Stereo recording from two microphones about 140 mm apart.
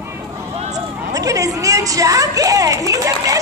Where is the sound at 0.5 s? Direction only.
55° right (ahead or behind).